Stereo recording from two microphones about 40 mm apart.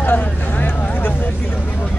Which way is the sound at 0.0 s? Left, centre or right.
Left.